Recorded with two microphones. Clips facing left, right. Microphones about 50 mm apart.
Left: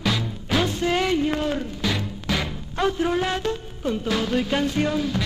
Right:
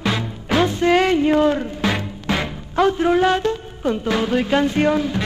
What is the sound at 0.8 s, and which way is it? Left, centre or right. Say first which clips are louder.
Music: right 6 dB; right.